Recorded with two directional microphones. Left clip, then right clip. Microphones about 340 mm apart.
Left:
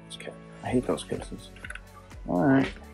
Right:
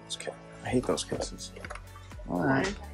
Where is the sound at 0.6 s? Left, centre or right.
Centre.